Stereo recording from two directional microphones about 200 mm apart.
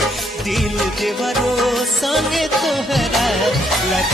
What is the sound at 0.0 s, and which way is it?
Music, centre (ahead or behind).